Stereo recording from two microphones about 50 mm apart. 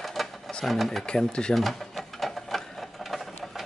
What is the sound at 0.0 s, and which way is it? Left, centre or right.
Sewing machine, centre.